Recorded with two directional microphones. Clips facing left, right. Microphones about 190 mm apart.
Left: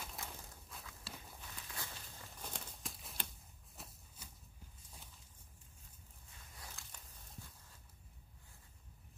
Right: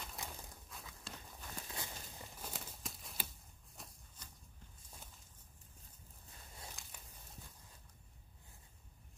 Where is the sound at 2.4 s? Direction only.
5° right (ahead or behind).